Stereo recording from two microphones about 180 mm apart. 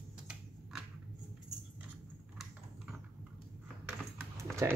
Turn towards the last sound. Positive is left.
turn(degrees=-15)  # may be behind; listen again after turning